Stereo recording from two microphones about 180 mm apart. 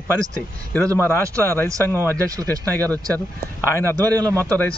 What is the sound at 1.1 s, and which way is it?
Speech, 15° left (ahead or behind).